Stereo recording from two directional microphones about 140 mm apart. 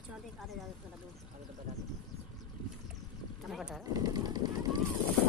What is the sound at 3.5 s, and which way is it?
Speech, 5° right (ahead or behind).